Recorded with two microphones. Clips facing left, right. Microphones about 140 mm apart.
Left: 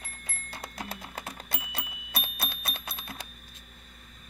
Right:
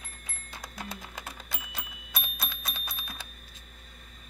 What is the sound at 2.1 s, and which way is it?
Bell, 65° left (ahead or behind).